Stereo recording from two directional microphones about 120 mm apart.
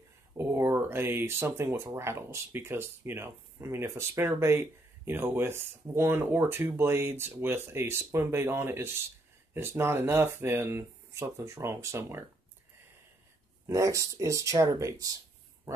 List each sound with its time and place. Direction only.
0.4 s speech: 20° right (ahead or behind)
13.7 s speech: 25° right (ahead or behind)